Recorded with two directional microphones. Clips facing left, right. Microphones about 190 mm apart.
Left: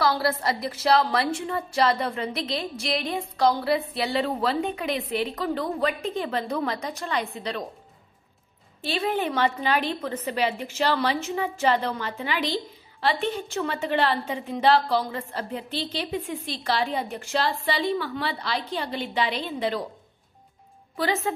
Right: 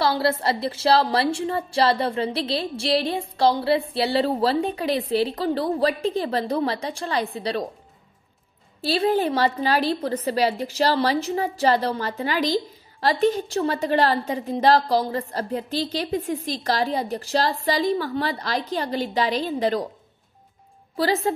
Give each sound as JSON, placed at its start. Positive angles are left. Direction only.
{"t": 0.0, "sound": "a woman's voice", "side_deg": -30}
{"t": 8.8, "sound": "a woman's voice", "side_deg": -35}
{"t": 20.9, "sound": "a woman's voice", "side_deg": -35}